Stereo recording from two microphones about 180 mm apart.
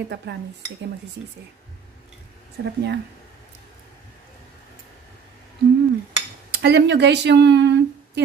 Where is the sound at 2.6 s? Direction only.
70° right (ahead or behind).